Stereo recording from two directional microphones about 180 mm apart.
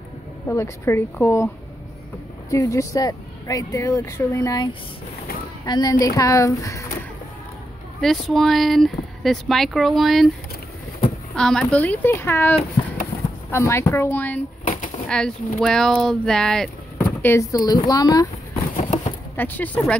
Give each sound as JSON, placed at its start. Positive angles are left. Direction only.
{"t": 0.5, "sound": "speech", "side_deg": 15}
{"t": 2.5, "sound": "speech", "side_deg": 15}
{"t": 5.7, "sound": "speech", "side_deg": 20}
{"t": 8.0, "sound": "speech", "side_deg": 0}
{"t": 11.3, "sound": "speech", "side_deg": 5}
{"t": 14.6, "sound": "a sound", "side_deg": 45}
{"t": 15.0, "sound": "speech", "side_deg": 5}
{"t": 17.0, "sound": "speech", "side_deg": 15}
{"t": 18.8, "sound": "a sound", "side_deg": 40}
{"t": 19.3, "sound": "speech", "side_deg": 10}